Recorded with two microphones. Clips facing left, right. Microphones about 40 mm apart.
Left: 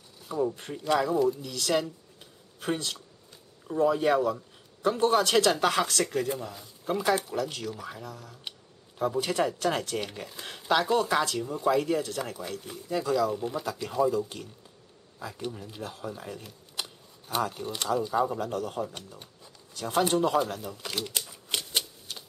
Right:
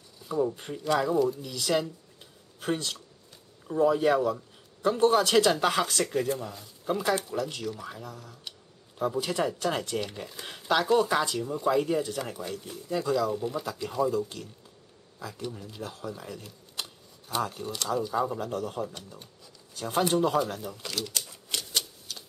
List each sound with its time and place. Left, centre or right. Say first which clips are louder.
0.3 s speech: right 1 dB; centre
1.4 s a sound: even; centre
3.6 s speech: right 1 dB; centre
7.3 s speech: even; centre
8.5 s a sound: left 3 dB; left
8.9 s speech: left 1 dB; centre
12.4 s speech: even; centre
20.8 s speech: left 1 dB; left
21.5 s typewriter: left 1 dB; left